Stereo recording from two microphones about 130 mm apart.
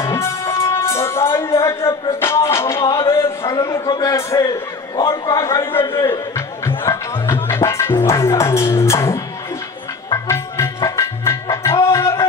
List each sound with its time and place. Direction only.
0.0 s music: 20° left (ahead or behind)
5.1 s a man's voice: 25° left (ahead or behind)
6.8 s music: 20° left (ahead or behind)